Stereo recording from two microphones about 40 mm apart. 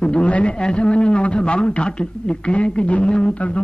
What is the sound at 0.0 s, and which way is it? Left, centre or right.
Speech, left.